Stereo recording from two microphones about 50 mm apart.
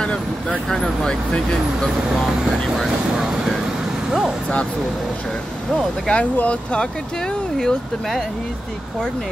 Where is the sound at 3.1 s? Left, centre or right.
Centre.